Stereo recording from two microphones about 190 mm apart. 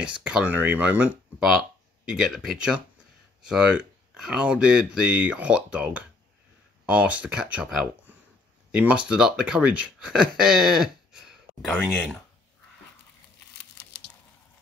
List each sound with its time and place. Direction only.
0.2 s speech: 5° right (ahead or behind)
11.7 s speech: 10° left (ahead or behind)
13.6 s crumpling: 60° left (ahead or behind)